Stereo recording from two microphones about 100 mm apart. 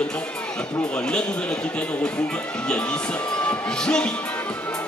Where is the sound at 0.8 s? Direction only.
10° left (ahead or behind).